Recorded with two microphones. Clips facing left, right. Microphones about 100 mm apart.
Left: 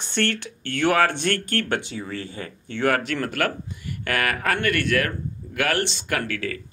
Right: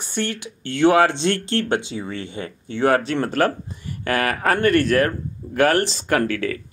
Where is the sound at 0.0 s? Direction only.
10° right (ahead or behind).